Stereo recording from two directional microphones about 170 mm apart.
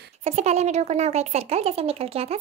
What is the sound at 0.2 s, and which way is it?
Speech, 40° right (ahead or behind).